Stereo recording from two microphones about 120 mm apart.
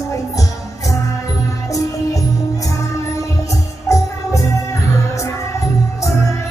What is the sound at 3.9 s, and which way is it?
Music, 25° left (ahead or behind).